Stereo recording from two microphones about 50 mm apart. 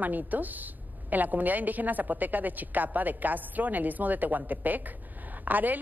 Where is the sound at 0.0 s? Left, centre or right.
Right.